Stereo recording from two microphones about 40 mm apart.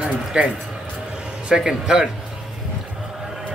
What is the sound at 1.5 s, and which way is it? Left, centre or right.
Speech, centre.